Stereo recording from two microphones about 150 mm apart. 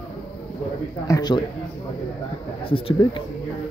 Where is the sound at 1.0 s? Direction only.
25° left (ahead or behind).